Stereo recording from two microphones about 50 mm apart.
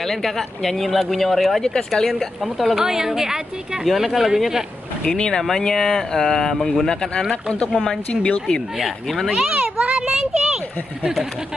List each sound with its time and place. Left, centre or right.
0.0 s speech: centre
1.6 s speech: centre
5.0 s a woman's voice: centre
8.7 s speech: centre
9.5 s children playing: right